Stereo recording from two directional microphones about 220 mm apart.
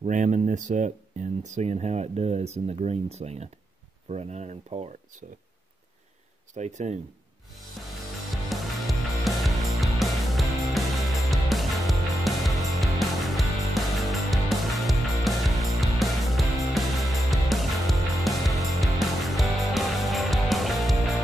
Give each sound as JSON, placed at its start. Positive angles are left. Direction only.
{"t": 0.0, "sound": "speech", "side_deg": -35}
{"t": 6.5, "sound": "speech", "side_deg": -30}
{"t": 8.5, "sound": "music", "side_deg": 0}